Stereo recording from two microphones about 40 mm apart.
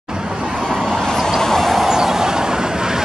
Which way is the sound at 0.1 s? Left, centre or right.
Centre.